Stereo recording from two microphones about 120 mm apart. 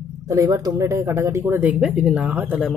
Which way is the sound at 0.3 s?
30° right (ahead or behind).